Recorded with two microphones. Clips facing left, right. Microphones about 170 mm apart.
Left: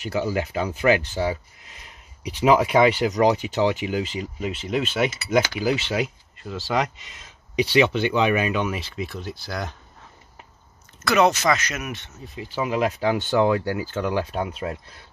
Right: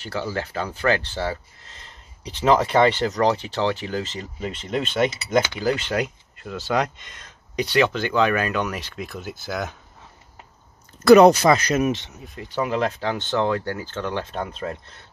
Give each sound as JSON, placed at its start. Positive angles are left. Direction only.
{"t": 0.0, "sound": "speech", "side_deg": 15}
{"t": 11.0, "sound": "speech", "side_deg": -35}
{"t": 12.4, "sound": "speech", "side_deg": 5}